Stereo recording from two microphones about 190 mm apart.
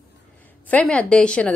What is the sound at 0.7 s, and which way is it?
Speech, 5° left (ahead or behind).